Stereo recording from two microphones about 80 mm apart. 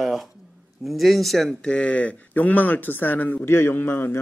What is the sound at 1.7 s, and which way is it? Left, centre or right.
Speech, centre.